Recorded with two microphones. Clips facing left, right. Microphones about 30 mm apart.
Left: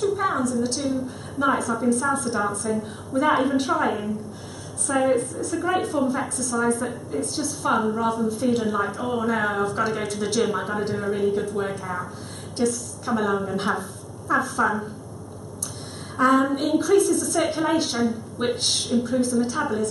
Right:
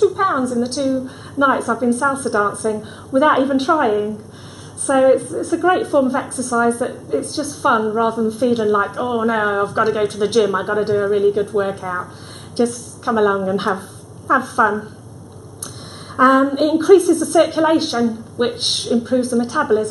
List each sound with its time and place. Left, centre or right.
0.2 s a woman's voice: right
12.5 s a woman's voice: right
16.2 s a woman's voice: centre